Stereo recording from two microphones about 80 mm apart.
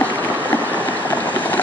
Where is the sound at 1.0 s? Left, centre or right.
Left.